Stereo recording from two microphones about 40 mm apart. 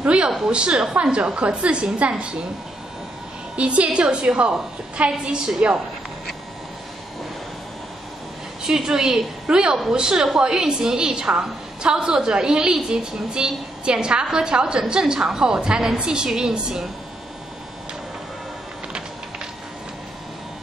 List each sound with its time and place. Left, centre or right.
0.0 s a woman's voice: right
3.5 s a woman's voice: right
8.6 s a woman's voice: centre